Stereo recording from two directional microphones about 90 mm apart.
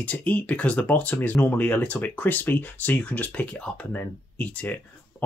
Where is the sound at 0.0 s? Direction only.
15° left (ahead or behind).